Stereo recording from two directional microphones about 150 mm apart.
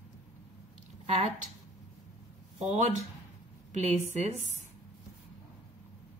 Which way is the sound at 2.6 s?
50° right (ahead or behind).